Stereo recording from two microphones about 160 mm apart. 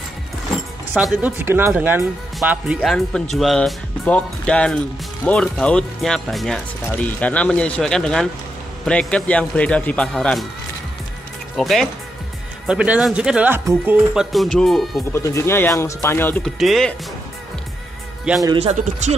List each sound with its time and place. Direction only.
1.0 s speech: 10° right (ahead or behind); by 10.4 s 5° left (ahead or behind)
11.5 s speech: centre (ahead or behind)
15.1 s speech: 15° left (ahead or behind)
16.5 s speech: centre (ahead or behind)
18.3 s speech: 5° right (ahead or behind)
18.6 s speech: 45° right (ahead or behind)